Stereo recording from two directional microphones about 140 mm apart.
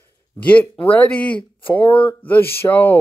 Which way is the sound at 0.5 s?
10° left (ahead or behind).